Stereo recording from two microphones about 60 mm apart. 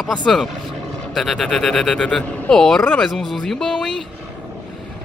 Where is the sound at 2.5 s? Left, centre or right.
Centre.